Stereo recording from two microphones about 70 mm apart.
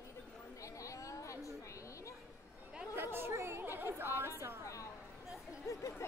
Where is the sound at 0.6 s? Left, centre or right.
Left.